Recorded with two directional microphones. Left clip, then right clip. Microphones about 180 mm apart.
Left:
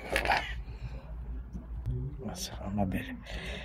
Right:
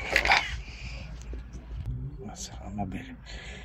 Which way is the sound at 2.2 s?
35° left (ahead or behind).